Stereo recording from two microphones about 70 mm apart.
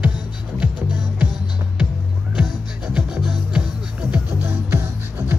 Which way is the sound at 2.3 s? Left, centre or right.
Centre.